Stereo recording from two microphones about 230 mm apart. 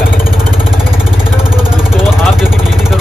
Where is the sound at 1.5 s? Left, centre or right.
Centre.